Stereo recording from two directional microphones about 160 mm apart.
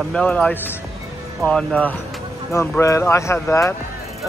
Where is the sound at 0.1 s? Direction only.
10° left (ahead or behind).